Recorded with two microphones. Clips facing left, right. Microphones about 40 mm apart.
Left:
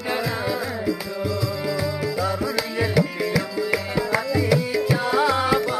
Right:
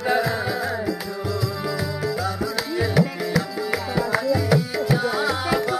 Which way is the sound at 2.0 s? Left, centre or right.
Centre.